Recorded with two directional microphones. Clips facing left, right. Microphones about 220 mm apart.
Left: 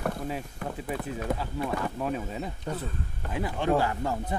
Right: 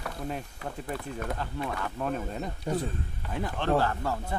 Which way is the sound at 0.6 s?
50° left (ahead or behind).